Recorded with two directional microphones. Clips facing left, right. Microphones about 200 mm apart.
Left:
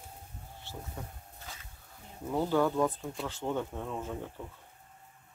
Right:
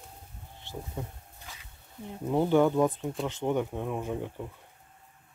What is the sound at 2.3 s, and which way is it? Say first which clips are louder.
Speech: right 5 dB; 20° right (ahead or behind).